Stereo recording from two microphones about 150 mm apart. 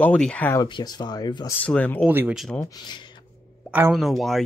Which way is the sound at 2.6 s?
30° left (ahead or behind).